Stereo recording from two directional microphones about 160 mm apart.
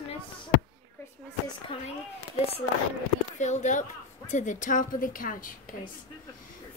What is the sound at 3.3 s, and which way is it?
Speech, 45° left (ahead or behind).